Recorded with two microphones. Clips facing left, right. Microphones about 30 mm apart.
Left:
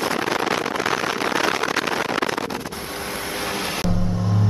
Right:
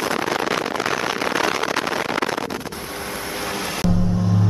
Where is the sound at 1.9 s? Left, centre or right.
Left.